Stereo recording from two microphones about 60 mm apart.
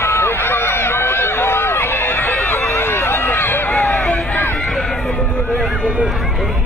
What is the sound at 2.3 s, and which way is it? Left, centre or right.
Run, left.